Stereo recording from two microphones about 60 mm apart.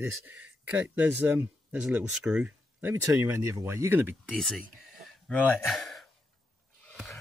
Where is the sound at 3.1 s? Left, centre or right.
Right.